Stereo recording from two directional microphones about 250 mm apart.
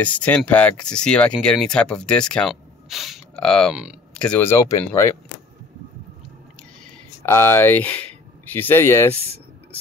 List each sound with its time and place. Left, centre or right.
0.0 s speech: centre
7.2 s speech: centre